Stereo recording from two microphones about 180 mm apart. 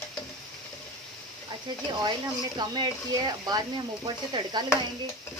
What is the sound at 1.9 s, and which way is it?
Speech, 25° right (ahead or behind).